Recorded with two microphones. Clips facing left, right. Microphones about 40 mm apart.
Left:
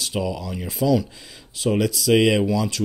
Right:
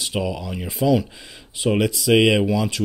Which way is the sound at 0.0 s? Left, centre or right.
Centre.